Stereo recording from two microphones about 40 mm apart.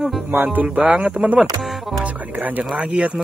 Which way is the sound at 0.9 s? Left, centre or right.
Right.